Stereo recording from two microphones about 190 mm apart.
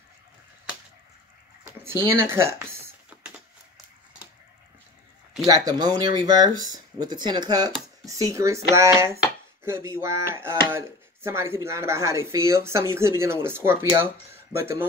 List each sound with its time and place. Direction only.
1.6 s typing: 15° right (ahead or behind)
5.7 s speech: 20° right (ahead or behind)